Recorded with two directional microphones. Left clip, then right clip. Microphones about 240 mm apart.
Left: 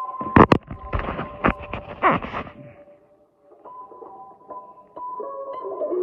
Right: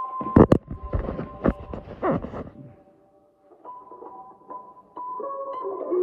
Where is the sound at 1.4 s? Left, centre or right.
Centre.